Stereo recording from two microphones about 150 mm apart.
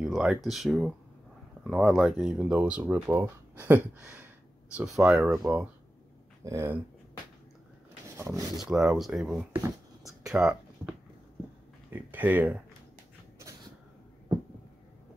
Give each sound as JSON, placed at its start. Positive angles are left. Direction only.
{"t": 0.0, "sound": "speech", "side_deg": -5}
{"t": 8.2, "sound": "speech", "side_deg": -20}
{"t": 8.5, "sound": "speech", "side_deg": -5}
{"t": 10.2, "sound": "a sound", "side_deg": -5}
{"t": 11.9, "sound": "speech", "side_deg": -10}